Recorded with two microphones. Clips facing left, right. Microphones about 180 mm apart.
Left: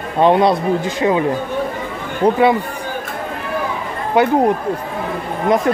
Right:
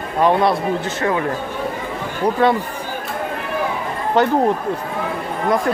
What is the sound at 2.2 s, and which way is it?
Speech, 25° left (ahead or behind).